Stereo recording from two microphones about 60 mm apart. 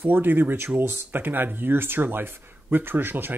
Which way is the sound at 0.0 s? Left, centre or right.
Right.